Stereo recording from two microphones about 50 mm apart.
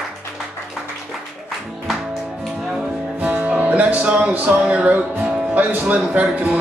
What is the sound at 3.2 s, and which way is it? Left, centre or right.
Music, right.